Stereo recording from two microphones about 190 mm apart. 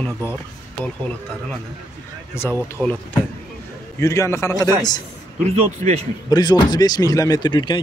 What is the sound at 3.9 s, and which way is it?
Speech, 15° left (ahead or behind).